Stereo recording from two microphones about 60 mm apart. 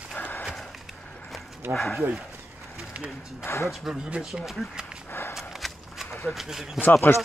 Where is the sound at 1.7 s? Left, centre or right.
Centre.